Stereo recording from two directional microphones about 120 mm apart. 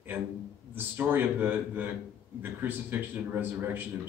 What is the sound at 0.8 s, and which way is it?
A man's voice, 15° right (ahead or behind).